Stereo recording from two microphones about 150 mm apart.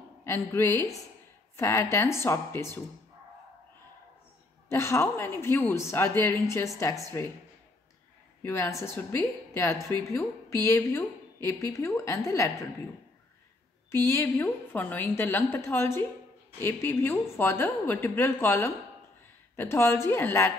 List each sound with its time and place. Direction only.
0.2 s a woman's voice: 15° left (ahead or behind)
4.6 s a woman's voice: 15° left (ahead or behind)
8.4 s a woman's voice: 15° left (ahead or behind)
13.9 s a woman's voice: 20° left (ahead or behind)